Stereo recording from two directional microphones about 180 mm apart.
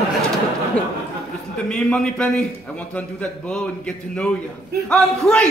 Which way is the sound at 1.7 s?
5° left (ahead or behind).